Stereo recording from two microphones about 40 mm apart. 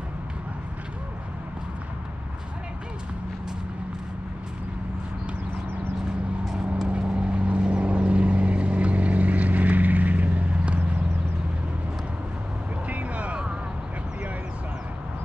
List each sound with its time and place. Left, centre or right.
6.9 s vehicle: right
12.8 s vehicle: right